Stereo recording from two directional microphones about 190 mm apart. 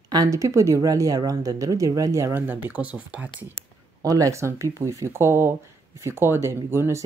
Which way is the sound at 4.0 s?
15° right (ahead or behind).